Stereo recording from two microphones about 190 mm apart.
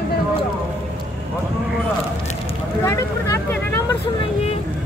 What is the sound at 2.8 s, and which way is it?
Vehicle, 15° left (ahead or behind).